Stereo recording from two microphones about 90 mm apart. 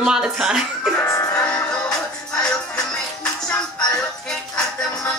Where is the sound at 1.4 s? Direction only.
10° left (ahead or behind).